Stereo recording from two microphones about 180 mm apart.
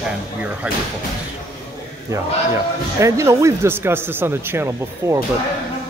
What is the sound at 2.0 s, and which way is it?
A man's voice, 15° right (ahead or behind).